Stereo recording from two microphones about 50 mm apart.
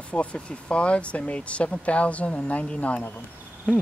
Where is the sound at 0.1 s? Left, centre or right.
Left.